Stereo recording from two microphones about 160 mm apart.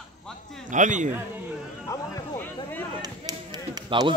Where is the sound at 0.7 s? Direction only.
50° right (ahead or behind).